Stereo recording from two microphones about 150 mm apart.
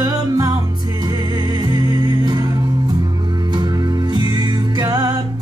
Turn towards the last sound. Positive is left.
turn(degrees=-25)  # may be behind; listen again after turning